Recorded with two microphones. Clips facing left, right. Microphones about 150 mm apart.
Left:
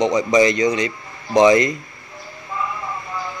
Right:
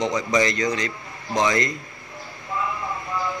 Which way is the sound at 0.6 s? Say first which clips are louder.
Left 6 dB; 20° left (ahead or behind).